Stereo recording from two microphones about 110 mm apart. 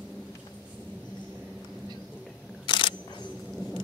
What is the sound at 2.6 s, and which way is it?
Camera, 45° left (ahead or behind).